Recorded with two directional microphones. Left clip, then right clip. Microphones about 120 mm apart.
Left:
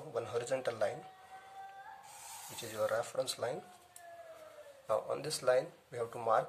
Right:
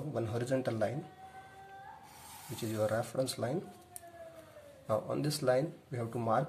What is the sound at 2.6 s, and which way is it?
Speech, 15° left (ahead or behind).